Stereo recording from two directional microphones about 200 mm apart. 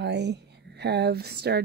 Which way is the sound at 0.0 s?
60° right (ahead or behind).